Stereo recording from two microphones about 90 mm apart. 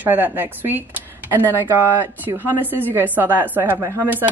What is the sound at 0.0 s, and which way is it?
Speech, 20° right (ahead or behind).